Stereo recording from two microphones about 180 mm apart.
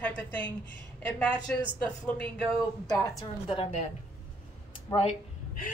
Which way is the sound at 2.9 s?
25° left (ahead or behind).